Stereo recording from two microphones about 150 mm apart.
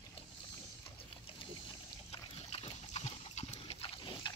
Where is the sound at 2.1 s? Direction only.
45° left (ahead or behind).